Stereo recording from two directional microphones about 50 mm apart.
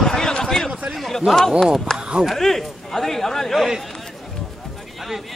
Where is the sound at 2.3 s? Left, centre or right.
Centre.